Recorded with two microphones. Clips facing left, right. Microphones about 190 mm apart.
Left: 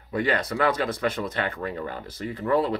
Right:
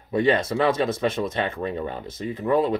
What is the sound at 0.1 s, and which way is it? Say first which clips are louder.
Speech: right 5 dB; 25° right (ahead or behind).